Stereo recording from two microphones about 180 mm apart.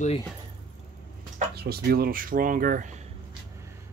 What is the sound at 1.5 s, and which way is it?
Speech, 60° right (ahead or behind).